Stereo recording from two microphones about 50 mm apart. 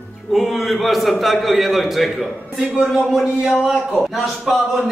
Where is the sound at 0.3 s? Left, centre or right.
Centre.